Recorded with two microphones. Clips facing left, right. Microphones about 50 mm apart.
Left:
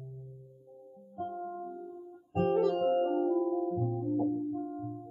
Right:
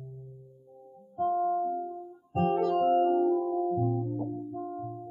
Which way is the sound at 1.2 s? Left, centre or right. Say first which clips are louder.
Right 11 dB; centre.